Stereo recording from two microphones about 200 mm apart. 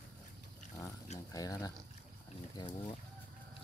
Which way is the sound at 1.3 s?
15° left (ahead or behind).